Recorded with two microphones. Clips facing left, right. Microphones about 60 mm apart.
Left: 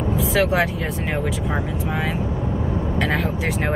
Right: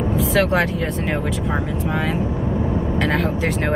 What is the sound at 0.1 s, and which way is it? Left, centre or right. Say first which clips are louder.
A woman's voice: right 1 dB; centre.